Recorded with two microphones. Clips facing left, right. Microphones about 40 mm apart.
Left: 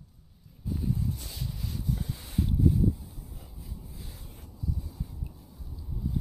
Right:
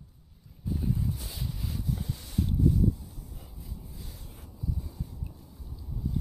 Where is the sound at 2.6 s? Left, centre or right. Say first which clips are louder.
Even; centre.